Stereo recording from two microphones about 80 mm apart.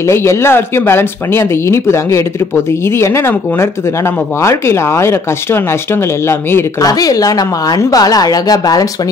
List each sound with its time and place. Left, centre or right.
0.0 s speech: left
6.8 s a woman's voice: left